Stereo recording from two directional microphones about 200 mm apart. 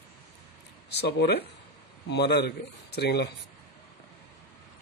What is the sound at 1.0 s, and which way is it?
Speech, 55° left (ahead or behind).